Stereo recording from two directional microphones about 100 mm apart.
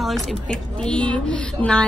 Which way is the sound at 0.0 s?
5° left (ahead or behind).